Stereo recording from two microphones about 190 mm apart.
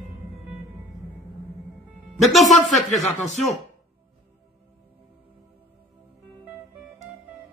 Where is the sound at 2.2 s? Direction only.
Centre (ahead or behind).